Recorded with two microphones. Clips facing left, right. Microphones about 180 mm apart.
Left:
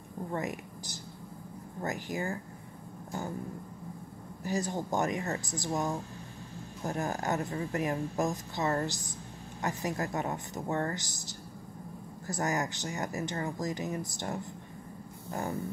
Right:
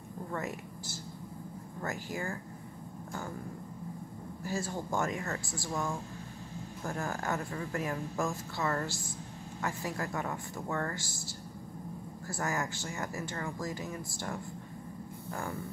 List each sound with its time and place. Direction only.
0.3 s speech: 15° left (ahead or behind)
4.4 s speech: 20° left (ahead or behind)